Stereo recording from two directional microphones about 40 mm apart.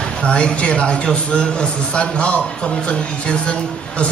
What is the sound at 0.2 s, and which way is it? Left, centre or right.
A man's voice, left.